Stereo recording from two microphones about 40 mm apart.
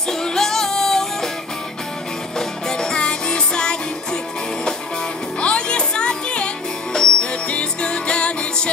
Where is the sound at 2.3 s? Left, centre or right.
Centre.